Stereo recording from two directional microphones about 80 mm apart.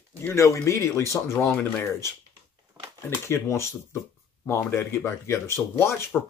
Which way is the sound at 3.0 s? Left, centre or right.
Left.